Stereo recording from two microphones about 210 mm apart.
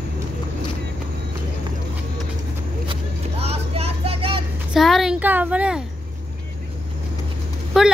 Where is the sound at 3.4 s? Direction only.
30° right (ahead or behind).